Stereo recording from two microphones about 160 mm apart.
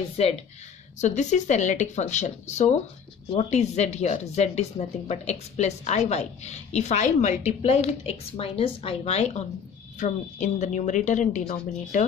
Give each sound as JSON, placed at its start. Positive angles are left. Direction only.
{"t": 0.2, "sound": "speech", "side_deg": 40}